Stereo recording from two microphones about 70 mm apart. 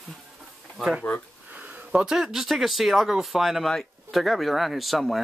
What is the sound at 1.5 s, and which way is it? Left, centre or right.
Speech, right.